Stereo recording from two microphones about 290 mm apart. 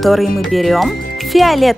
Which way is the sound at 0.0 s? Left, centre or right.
Centre.